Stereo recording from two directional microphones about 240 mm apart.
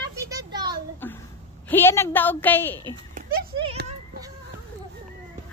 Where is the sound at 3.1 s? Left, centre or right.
Right.